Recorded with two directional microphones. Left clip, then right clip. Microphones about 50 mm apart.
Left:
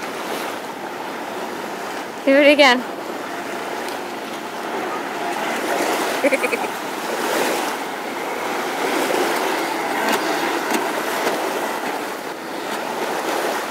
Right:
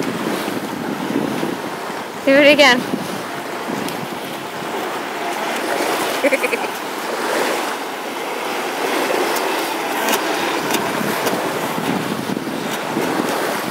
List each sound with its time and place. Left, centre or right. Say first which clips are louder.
2.2 s speech: right 2 dB; centre
6.2 s speech: right 2 dB; centre
7.2 s waves: right 1 dB; left
9.0 s vehicle: right 1 dB; left
9.3 s vehicle: right 1 dB; centre